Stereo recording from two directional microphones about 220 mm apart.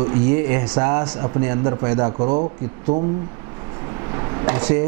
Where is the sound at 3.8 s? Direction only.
20° right (ahead or behind).